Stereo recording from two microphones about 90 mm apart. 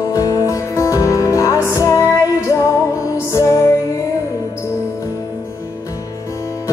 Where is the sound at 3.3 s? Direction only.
40° left (ahead or behind).